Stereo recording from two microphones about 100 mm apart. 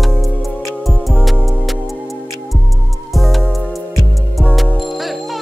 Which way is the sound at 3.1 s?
Centre (ahead or behind).